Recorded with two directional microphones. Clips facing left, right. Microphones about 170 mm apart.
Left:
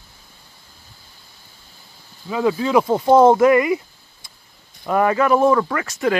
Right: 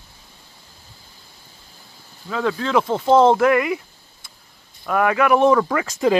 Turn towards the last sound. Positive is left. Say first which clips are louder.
# right 2 dB
turn(degrees=-20)  # may be behind; listen again after turning